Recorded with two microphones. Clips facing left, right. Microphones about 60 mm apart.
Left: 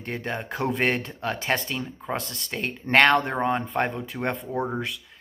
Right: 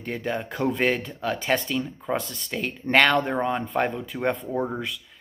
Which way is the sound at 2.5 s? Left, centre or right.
Centre.